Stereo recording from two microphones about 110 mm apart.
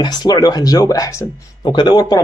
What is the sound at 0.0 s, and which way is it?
Speech, 35° left (ahead or behind).